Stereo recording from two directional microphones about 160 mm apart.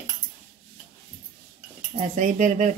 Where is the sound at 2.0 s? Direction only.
55° right (ahead or behind).